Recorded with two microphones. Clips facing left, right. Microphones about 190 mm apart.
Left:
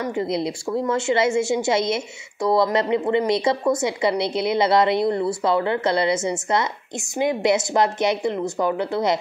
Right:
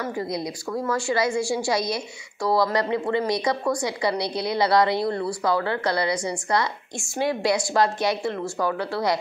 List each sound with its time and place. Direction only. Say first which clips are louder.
0.0 s a woman's voice: left 4 dB; 25° left (ahead or behind)